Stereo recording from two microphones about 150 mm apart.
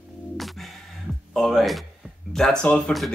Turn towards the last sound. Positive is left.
turn(degrees=5)  # may be behind; listen again after turning